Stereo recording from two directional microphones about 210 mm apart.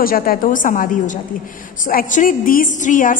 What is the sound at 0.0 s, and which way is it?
A woman's voice, 45° left (ahead or behind).